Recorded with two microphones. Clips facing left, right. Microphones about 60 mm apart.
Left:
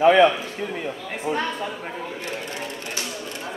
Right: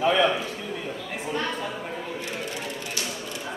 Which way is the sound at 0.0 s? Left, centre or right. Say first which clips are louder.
Left 7 dB; left.